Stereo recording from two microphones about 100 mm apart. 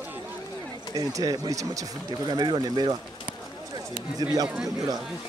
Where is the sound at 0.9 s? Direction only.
35° right (ahead or behind).